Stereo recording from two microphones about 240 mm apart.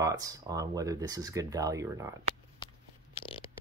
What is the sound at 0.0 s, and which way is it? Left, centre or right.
Speech, centre.